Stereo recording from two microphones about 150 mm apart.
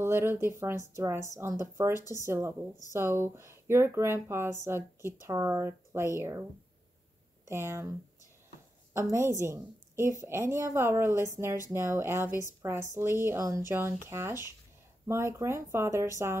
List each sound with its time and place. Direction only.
0.0 s speech: 15° right (ahead or behind)
7.4 s speech: 15° right (ahead or behind)
9.1 s a woman's voice: 15° right (ahead or behind)